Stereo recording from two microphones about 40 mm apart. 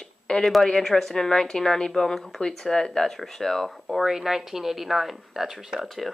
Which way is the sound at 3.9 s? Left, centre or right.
Centre.